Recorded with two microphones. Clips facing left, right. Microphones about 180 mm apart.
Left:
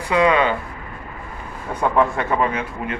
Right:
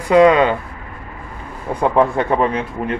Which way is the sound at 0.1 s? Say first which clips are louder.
Right 6 dB; 40° right (ahead or behind).